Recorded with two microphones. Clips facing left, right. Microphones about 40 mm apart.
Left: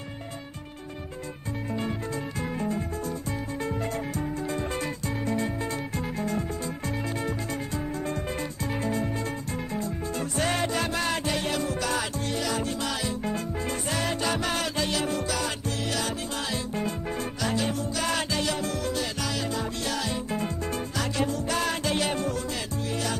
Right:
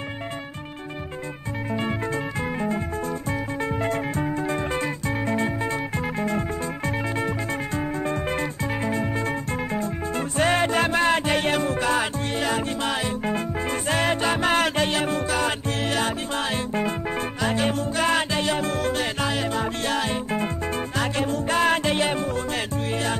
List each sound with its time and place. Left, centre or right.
1.7 s music: right
3.6 s music: right